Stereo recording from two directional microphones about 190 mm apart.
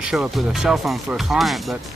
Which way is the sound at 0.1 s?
5° right (ahead or behind).